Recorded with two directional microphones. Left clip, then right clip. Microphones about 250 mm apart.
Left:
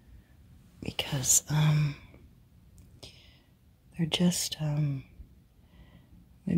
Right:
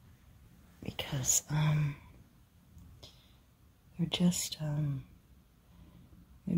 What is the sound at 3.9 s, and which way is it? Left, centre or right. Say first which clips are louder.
Speech: left 4 dB; centre.